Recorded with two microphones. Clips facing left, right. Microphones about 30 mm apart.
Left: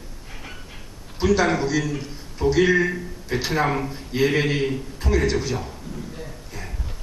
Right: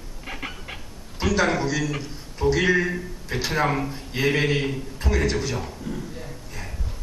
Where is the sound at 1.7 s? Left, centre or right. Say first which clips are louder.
Left 2 dB; right.